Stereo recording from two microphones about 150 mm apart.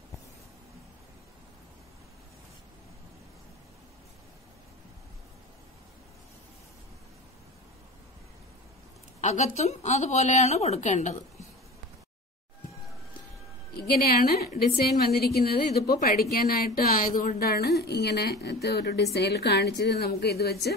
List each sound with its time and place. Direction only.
9.2 s a woman's voice: 50° left (ahead or behind)
13.7 s a woman's voice: 90° left